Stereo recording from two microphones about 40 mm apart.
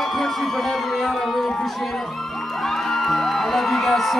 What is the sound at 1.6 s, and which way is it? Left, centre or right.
Music, centre.